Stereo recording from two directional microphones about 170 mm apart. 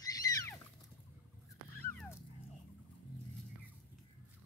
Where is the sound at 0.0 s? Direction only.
20° left (ahead or behind).